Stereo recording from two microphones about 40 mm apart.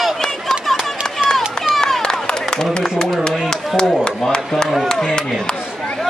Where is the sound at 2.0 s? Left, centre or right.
Centre.